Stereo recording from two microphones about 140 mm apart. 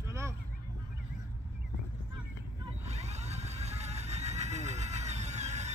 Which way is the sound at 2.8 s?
50° right (ahead or behind).